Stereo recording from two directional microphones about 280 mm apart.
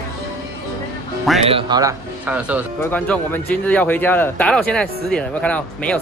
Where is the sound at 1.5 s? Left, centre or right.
Centre.